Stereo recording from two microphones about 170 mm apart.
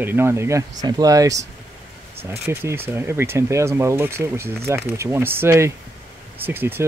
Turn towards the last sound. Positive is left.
turn(degrees=-10)  # may be behind; listen again after turning